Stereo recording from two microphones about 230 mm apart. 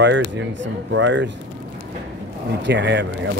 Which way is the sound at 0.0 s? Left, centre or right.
Right.